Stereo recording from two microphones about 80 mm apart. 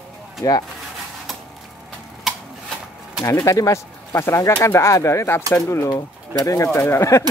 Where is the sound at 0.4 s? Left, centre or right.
Left.